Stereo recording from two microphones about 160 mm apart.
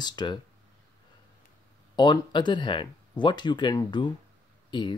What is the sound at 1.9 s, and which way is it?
Speech, 30° left (ahead or behind).